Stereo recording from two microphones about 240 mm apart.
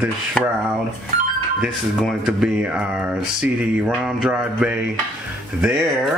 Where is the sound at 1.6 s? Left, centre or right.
Centre.